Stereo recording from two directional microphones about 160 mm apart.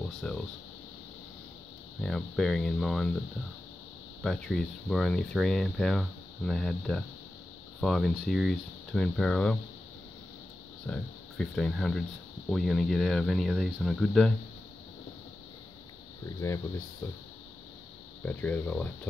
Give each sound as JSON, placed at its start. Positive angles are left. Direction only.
{"t": 0.2, "sound": "speech", "side_deg": 5}
{"t": 2.0, "sound": "speech", "side_deg": 5}
{"t": 4.2, "sound": "speech", "side_deg": 5}
{"t": 10.9, "sound": "speech", "side_deg": 5}
{"t": 16.4, "sound": "speech", "side_deg": 15}
{"t": 18.2, "sound": "speech", "side_deg": 10}